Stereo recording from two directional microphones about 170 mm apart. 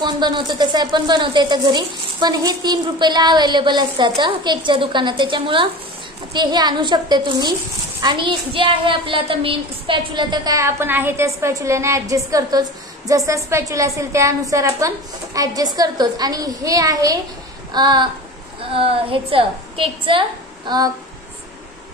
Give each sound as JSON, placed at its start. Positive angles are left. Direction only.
{"t": 0.0, "sound": "a woman's voice", "side_deg": -25}